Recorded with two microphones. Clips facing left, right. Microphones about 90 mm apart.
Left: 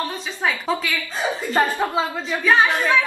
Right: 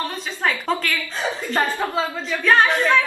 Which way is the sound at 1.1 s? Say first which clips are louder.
Left 4 dB; 15° left (ahead or behind).